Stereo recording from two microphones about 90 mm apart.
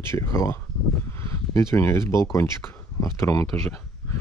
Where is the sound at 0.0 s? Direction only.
30° left (ahead or behind).